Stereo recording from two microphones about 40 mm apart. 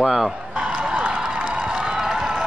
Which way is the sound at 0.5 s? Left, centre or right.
Centre.